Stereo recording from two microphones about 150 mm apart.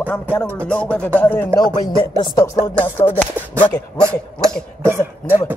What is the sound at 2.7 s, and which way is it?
Speech, 10° left (ahead or behind).